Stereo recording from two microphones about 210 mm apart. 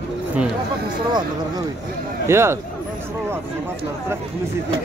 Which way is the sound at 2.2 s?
10° right (ahead or behind).